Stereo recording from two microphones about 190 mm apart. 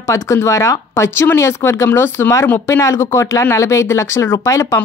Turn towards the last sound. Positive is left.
turn(degrees=15)  # may be behind; listen again after turning